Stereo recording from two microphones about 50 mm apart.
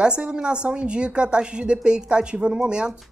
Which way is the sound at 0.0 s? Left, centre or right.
Centre.